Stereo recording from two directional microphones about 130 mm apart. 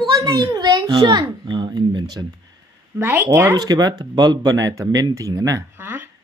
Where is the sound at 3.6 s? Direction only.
30° right (ahead or behind).